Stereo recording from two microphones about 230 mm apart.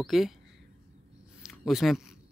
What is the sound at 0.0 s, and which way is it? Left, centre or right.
Speech, centre.